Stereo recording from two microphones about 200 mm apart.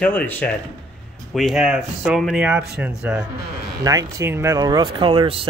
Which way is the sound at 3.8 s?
15° right (ahead or behind).